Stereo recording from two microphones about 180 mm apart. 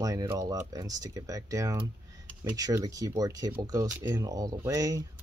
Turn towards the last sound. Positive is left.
turn(degrees=-20)  # may be behind; listen again after turning